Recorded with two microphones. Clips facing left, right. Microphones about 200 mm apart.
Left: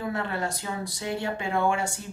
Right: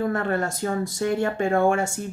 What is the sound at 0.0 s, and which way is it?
Speech, 50° right (ahead or behind).